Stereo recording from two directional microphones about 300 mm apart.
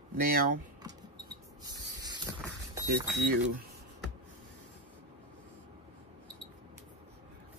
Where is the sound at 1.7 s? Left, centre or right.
Centre.